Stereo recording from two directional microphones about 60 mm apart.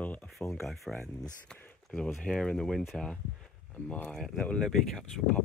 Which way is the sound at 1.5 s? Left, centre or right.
Centre.